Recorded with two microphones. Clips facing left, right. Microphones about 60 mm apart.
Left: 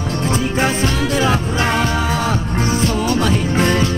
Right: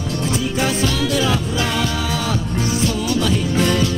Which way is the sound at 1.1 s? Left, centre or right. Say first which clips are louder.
Left 2 dB; left.